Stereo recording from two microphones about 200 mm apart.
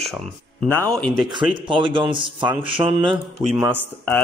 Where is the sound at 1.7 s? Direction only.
25° right (ahead or behind).